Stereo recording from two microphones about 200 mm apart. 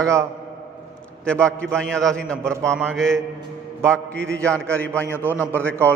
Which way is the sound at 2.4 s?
15° right (ahead or behind).